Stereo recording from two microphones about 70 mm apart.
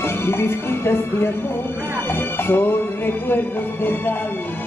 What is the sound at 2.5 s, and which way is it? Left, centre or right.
Music, left.